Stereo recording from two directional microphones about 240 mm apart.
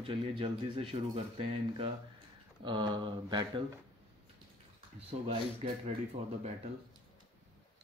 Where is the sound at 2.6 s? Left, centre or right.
Centre.